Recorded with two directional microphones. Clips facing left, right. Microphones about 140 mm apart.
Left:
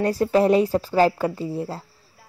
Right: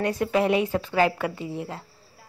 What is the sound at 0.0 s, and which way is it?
Speech, 35° left (ahead or behind).